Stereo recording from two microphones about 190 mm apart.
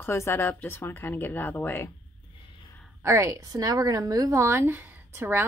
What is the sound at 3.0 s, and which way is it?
A woman's voice, 15° right (ahead or behind).